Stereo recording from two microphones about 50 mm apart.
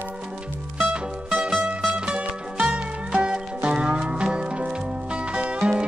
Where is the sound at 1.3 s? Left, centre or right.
Centre.